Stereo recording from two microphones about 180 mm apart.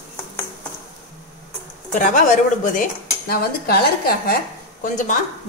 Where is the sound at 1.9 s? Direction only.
45° left (ahead or behind).